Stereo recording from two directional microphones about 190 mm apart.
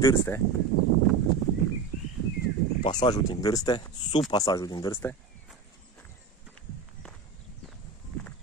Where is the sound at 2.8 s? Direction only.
20° left (ahead or behind).